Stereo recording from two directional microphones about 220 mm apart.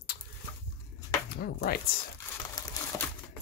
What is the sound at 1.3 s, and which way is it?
Speech, 45° left (ahead or behind).